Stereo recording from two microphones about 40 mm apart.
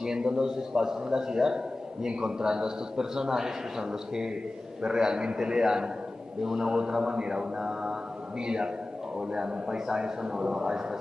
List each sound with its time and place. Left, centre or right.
0.0 s a man's voice: centre